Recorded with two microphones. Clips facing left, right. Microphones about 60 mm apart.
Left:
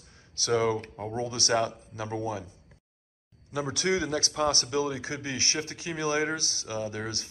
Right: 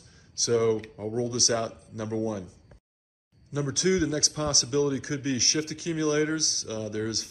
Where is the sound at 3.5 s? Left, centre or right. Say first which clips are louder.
Right 2 dB; left.